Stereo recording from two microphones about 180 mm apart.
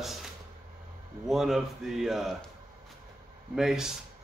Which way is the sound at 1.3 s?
Centre (ahead or behind).